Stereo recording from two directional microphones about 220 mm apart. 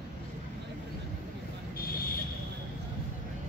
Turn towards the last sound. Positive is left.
turn(degrees=40)  # may be behind; listen again after turning